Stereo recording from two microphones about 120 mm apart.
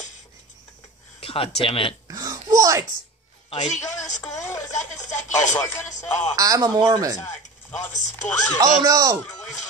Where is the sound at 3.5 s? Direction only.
75° left (ahead or behind).